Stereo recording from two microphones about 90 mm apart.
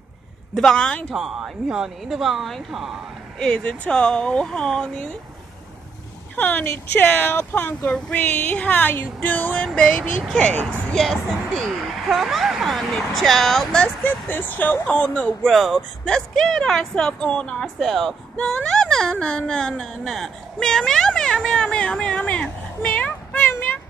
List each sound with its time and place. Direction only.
0.6 s speech: 5° left (ahead or behind)
1.1 s speech: 5° right (ahead or behind)
3.3 s speech: 10° left (ahead or behind)
6.3 s speech: 20° left (ahead or behind)
7.8 s speech: 10° left (ahead or behind)
11.0 s speech: 5° left (ahead or behind)
14.0 s speech: 25° left (ahead or behind)
15.4 s speech: centre (ahead or behind); by 23.5 s 15° left (ahead or behind)